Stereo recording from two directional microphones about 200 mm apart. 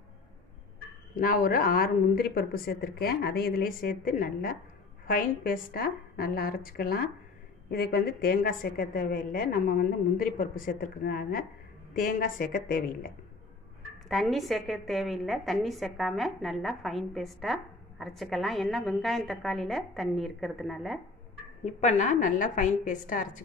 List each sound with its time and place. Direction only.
1.1 s a woman's voice: 45° left (ahead or behind)
14.0 s a woman's voice: centre (ahead or behind)
21.6 s a woman's voice: 35° left (ahead or behind)